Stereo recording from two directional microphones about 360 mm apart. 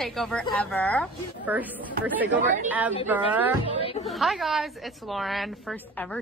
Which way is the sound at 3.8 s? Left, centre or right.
Centre.